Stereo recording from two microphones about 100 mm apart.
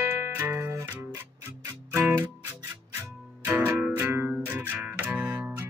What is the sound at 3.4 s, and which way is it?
Music, 20° right (ahead or behind).